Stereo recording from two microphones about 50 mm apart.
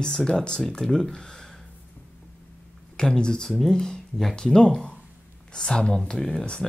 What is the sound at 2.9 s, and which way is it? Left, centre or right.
Speech, centre.